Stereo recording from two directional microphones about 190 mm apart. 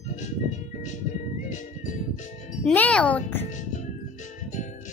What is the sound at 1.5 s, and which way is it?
Music, 40° left (ahead or behind).